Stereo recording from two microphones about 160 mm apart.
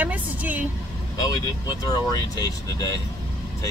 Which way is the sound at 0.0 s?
10° right (ahead or behind).